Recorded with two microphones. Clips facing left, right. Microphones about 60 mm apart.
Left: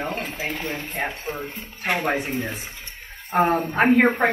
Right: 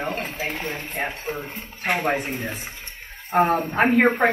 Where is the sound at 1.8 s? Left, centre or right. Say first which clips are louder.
Even; right.